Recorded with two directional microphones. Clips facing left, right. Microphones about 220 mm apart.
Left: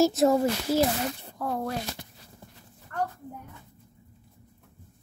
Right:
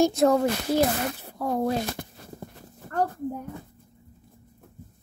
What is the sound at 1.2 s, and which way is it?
Speech, 15° right (ahead or behind).